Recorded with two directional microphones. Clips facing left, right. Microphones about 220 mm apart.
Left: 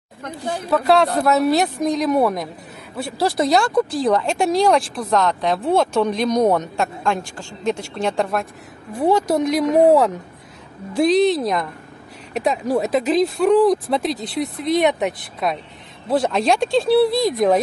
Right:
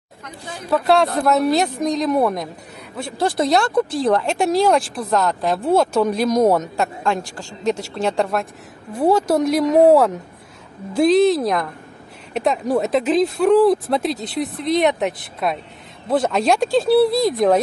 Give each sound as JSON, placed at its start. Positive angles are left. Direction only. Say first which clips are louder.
{"t": 0.7, "sound": "speech", "louder": "even", "side_deg": 0}